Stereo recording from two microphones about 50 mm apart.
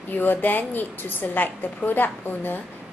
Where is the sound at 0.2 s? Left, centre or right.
Left.